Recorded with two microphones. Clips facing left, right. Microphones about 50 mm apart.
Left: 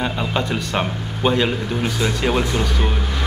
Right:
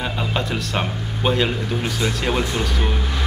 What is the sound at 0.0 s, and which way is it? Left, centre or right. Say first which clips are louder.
Speech: left 2 dB; centre.